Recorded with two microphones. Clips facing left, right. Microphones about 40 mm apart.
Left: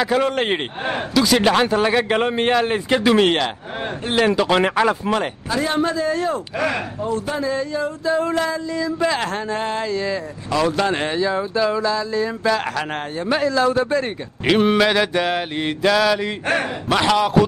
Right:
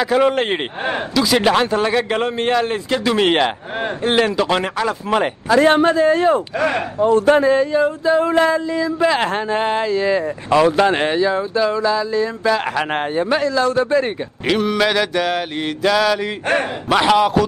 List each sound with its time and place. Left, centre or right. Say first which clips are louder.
0.1 s mantra: right 6 dB; centre
3.3 s mantra: right 5 dB; centre
4.4 s mantra: left 1 dB; centre
4.6 s speech: left 3 dB; centre
5.5 s speech: right 8 dB; right
7.0 s speech: right 10 dB; right
8.6 s mantra: right 3 dB; centre
9.8 s speech: right 5 dB; centre
10.6 s mantra: right 4 dB; centre
11.1 s mantra: right 3 dB; centre
12.9 s mantra: right 6 dB; right
13.3 s mantra: left 2 dB; centre
14.8 s mantra: even; centre